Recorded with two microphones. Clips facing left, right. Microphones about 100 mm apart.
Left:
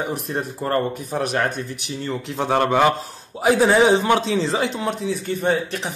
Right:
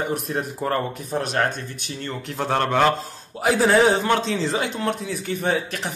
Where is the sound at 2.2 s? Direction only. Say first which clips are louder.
Left 3 dB; 15° left (ahead or behind).